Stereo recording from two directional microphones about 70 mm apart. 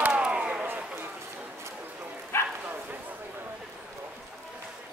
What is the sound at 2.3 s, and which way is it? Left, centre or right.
Bow-wow, left.